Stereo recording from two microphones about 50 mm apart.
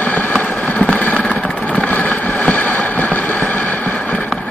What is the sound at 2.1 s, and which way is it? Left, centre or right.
Boat, centre.